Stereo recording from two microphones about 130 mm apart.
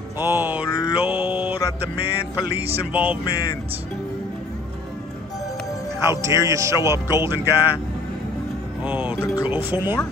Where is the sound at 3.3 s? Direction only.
30° left (ahead or behind).